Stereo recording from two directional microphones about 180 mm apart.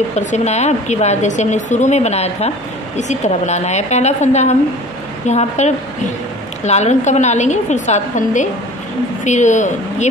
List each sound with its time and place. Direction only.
0.1 s a woman's voice: 40° left (ahead or behind)